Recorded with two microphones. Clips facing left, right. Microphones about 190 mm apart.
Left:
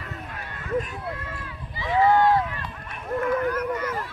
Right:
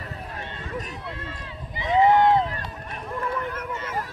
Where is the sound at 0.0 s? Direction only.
30° right (ahead or behind).